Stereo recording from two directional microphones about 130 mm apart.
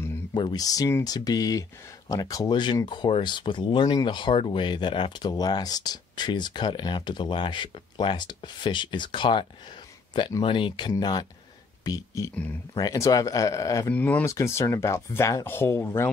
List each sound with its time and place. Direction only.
0.3 s speech: 35° left (ahead or behind)
13.9 s speech: 10° left (ahead or behind)
14.2 s speech: 20° left (ahead or behind)